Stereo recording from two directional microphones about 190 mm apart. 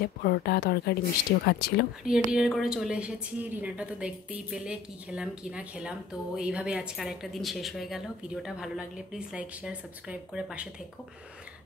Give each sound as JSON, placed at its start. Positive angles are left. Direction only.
{"t": 0.0, "sound": "speech", "side_deg": 55}
{"t": 2.0, "sound": "a woman's voice", "side_deg": -5}